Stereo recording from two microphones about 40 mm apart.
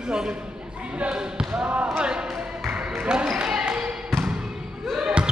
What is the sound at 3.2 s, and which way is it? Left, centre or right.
Basketball bounce, centre.